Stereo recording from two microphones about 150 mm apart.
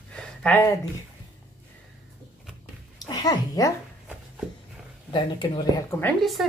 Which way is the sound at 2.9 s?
25° left (ahead or behind).